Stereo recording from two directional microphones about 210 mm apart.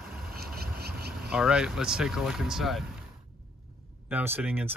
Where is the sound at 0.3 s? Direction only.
45° right (ahead or behind).